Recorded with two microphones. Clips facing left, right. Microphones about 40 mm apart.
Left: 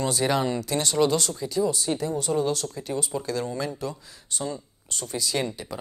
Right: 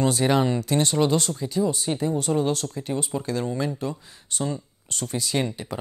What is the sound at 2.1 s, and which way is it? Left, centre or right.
Speech, right.